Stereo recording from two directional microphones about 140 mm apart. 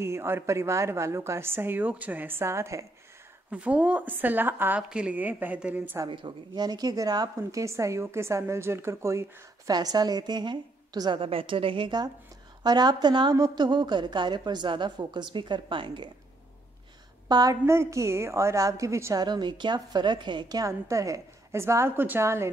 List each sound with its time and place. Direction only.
0.0 s a woman's voice: 20° right (ahead or behind)
3.4 s a woman's voice: 10° right (ahead or behind)
6.0 s a woman's voice: 35° right (ahead or behind)
17.3 s a woman's voice: 25° right (ahead or behind)